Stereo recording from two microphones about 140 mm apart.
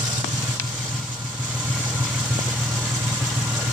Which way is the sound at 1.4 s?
10° right (ahead or behind).